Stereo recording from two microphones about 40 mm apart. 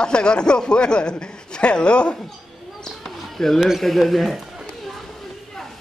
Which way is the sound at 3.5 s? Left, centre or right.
Centre.